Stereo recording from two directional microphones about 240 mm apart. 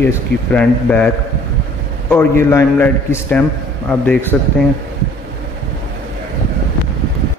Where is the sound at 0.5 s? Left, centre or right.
Centre.